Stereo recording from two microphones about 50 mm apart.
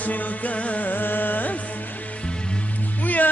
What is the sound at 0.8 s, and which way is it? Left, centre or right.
Carnatic music, left.